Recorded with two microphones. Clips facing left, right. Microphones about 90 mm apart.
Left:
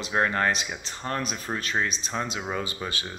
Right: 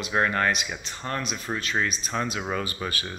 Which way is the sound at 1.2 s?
40° left (ahead or behind).